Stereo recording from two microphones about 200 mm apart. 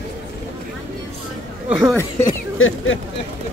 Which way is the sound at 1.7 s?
5° right (ahead or behind).